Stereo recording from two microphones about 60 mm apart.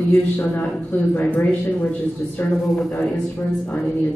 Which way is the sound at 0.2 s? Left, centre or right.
Left.